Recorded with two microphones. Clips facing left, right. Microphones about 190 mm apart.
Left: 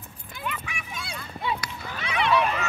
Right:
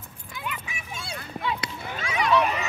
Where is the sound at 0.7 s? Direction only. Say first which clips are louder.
Even; 30° right (ahead or behind).